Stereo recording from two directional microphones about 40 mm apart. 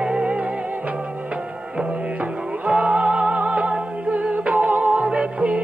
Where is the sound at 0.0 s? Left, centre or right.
Right.